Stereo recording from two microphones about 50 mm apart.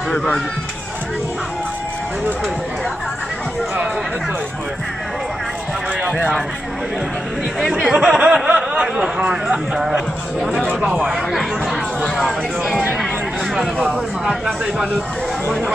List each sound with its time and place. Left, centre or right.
0.1 s speech: centre
6.0 s a sound: right
7.9 s speech: centre
8.5 s a sound: right
8.8 s speech: centre
12.2 s speech: centre
13.7 s speech: right